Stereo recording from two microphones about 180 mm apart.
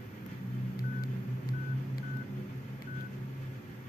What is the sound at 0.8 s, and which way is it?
Telephone dialing, 55° left (ahead or behind).